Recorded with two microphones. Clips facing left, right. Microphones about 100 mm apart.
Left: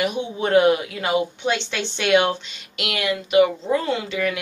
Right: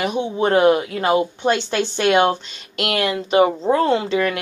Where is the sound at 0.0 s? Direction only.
35° right (ahead or behind).